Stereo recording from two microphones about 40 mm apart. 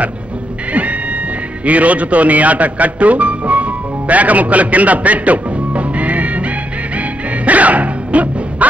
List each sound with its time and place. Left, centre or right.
1.7 s speech: right
7.0 s music: right